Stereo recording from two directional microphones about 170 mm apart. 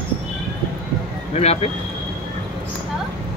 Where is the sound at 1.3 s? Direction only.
40° left (ahead or behind).